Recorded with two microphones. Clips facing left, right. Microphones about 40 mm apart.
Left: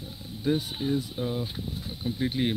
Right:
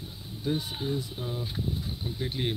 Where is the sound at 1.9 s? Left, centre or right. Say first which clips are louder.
Left 4 dB; centre.